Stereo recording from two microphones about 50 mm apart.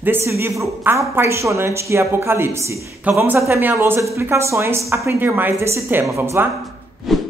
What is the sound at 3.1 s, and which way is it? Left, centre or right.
Speech, right.